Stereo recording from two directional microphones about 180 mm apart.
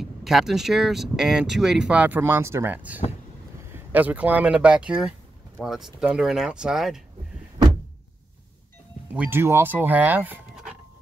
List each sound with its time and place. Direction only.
0.0 s speech: centre (ahead or behind)
9.1 s speech: 10° right (ahead or behind)